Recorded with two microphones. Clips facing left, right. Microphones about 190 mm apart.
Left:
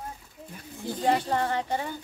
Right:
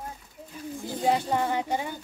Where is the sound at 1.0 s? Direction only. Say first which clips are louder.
Even; 10° right (ahead or behind).